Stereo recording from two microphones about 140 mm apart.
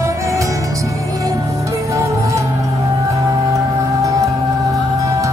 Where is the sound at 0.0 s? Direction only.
20° right (ahead or behind).